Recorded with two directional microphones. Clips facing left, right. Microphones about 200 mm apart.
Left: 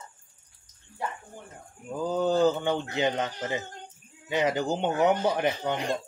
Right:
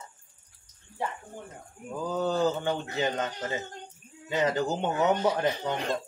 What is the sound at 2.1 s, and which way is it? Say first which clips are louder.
A man's voice: left 3 dB; 20° left (ahead or behind).